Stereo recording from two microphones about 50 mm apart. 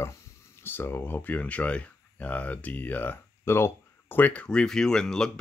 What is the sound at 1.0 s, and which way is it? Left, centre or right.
Speech, left.